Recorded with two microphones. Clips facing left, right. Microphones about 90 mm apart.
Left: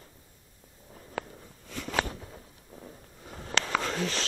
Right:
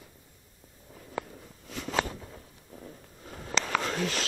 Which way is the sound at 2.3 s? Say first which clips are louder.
Even; 10° left (ahead or behind).